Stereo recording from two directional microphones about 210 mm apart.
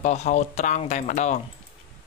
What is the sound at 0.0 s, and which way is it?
Speech, 35° left (ahead or behind).